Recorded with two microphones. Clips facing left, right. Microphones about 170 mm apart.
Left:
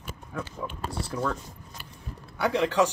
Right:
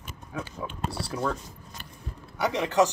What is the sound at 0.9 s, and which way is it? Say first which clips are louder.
Speech: left 1 dB; 5° right (ahead or behind).